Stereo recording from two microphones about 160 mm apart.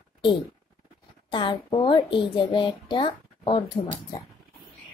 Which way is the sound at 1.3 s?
30° left (ahead or behind).